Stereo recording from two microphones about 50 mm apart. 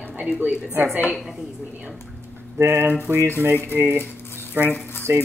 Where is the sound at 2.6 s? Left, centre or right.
Right.